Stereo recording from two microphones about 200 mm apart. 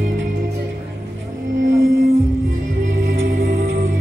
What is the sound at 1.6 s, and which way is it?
Music, 70° right (ahead or behind).